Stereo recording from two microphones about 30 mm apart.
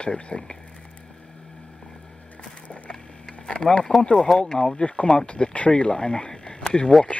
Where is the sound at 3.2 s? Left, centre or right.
Left.